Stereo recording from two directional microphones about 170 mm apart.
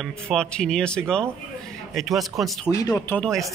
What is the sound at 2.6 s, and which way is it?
Speech, 15° left (ahead or behind).